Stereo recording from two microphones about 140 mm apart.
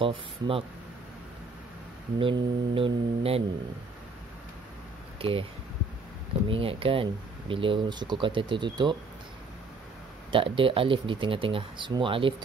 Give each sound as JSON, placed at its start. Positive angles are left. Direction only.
{"t": 0.0, "sound": "speech", "side_deg": -40}
{"t": 2.1, "sound": "speech", "side_deg": -40}
{"t": 5.2, "sound": "speech", "side_deg": -40}
{"t": 6.5, "sound": "speech", "side_deg": -40}
{"t": 10.3, "sound": "speech", "side_deg": -40}